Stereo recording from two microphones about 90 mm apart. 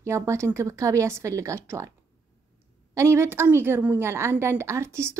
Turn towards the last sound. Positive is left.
turn(degrees=-30)  # may be behind; listen again after turning